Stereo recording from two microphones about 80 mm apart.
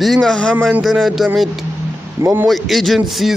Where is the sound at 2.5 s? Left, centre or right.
Centre.